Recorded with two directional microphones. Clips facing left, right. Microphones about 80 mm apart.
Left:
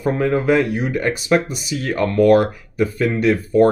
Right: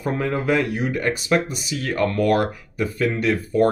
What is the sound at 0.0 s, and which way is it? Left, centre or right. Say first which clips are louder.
Speech: left 5 dB; left.